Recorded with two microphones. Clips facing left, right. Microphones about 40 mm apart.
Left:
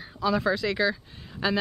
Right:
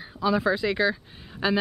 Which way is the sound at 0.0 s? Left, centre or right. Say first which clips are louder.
Right 1 dB; centre.